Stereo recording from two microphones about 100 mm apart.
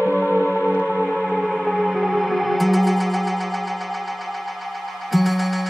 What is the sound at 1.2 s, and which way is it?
Music, centre (ahead or behind).